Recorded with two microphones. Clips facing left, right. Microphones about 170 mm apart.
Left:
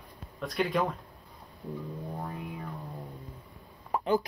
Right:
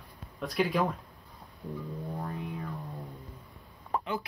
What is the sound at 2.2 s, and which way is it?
Music, centre (ahead or behind).